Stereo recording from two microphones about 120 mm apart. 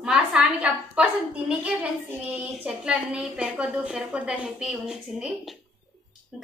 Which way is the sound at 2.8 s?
5° right (ahead or behind).